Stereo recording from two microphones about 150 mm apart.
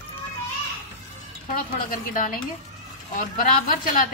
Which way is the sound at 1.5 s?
65° left (ahead or behind).